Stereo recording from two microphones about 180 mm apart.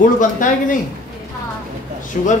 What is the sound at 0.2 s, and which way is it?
Speech, 45° left (ahead or behind).